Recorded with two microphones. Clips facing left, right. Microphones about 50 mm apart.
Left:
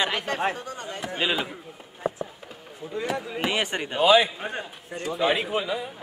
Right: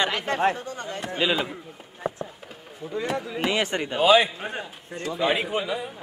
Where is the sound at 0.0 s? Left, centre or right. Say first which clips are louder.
Right 2 dB; centre.